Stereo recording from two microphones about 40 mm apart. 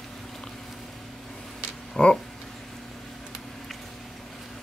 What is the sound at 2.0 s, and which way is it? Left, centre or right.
Speech, centre.